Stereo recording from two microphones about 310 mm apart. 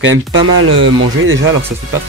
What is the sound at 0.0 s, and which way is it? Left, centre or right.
Speech, right.